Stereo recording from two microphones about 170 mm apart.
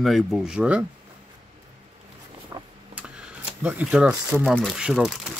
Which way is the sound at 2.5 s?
20° right (ahead or behind).